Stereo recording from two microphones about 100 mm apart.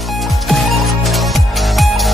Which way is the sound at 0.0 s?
Centre (ahead or behind).